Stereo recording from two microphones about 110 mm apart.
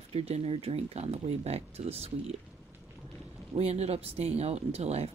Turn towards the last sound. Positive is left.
turn(degrees=-70)  # may be behind; listen again after turning